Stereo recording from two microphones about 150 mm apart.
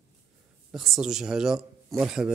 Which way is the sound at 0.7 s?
Centre (ahead or behind).